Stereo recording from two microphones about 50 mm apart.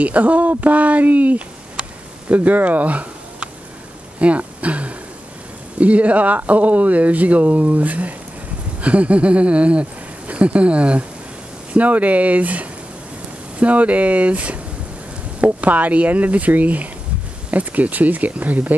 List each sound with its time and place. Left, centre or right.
0.0 s speech: right
1.8 s a sound: right
4.2 s speech: right